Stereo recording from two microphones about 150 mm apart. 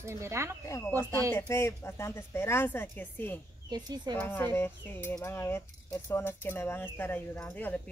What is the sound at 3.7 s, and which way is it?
Speech, 30° right (ahead or behind).